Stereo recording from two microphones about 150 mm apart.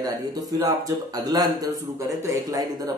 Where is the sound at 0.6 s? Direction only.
25° right (ahead or behind).